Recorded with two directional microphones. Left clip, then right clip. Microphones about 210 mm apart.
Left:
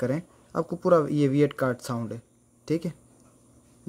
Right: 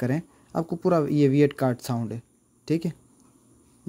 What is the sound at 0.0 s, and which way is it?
Speech, 20° right (ahead or behind).